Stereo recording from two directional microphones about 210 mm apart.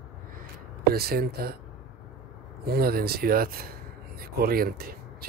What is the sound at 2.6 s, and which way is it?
Speech, 45° right (ahead or behind).